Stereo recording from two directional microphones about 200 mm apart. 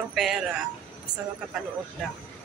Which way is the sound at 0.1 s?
Centre (ahead or behind).